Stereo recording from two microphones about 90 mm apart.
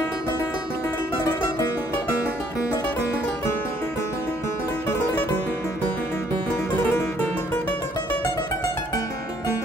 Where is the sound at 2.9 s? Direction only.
20° left (ahead or behind).